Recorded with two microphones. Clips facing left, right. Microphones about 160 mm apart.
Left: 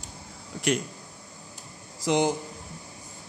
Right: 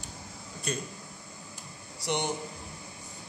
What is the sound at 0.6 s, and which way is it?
Speech, 90° left.